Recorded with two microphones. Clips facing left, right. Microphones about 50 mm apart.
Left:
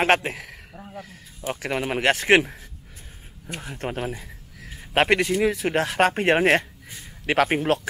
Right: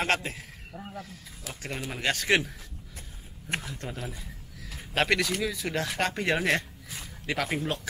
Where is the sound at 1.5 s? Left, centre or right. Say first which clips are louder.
Left 10 dB; left.